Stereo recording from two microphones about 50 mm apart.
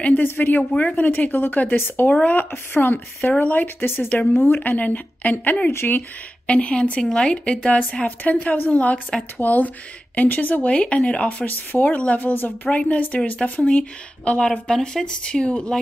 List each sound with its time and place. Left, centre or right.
0.0 s a woman's voice: left
3.6 s speech: left
4.1 s a woman's voice: left
5.7 s speech: left
6.4 s a woman's voice: left
10.7 s speech: left
12.7 s speech: left